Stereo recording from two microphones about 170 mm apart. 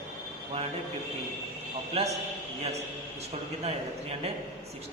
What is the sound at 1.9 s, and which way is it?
Speech, 40° right (ahead or behind).